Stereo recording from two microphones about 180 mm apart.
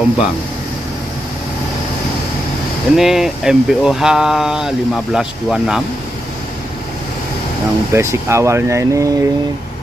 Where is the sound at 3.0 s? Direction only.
Centre (ahead or behind).